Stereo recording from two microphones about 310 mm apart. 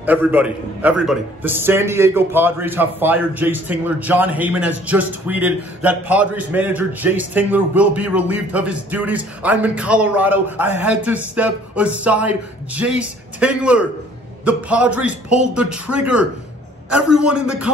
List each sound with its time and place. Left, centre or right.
0.0 s a man's voice: centre